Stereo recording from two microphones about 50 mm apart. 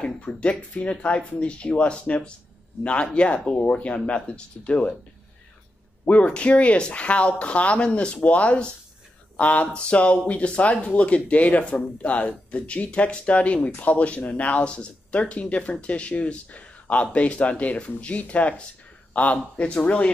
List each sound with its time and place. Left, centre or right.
0.0 s speech: left
6.0 s speech: left